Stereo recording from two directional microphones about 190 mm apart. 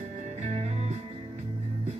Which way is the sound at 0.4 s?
35° right (ahead or behind).